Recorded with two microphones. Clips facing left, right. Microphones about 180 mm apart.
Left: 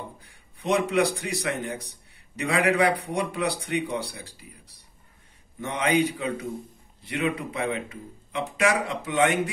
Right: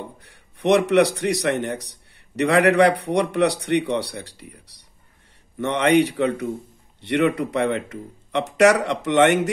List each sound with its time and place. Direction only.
0.2 s a man's voice: 75° right (ahead or behind)